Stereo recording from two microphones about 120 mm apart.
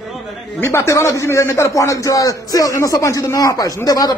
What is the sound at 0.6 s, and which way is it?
A man's voice, 20° left (ahead or behind).